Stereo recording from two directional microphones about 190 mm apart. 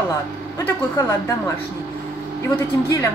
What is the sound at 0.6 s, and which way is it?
Speech, 15° left (ahead or behind).